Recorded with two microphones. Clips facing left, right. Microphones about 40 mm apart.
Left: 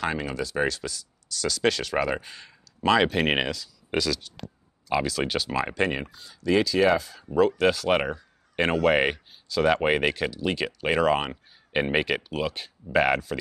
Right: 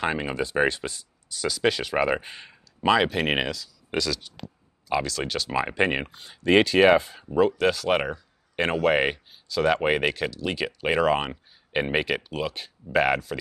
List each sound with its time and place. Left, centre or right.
0.0 s speech: right
1.4 s speech: centre
2.8 s speech: centre
5.5 s speech: centre
5.9 s speech: right
6.1 s speech: right
7.2 s speech: centre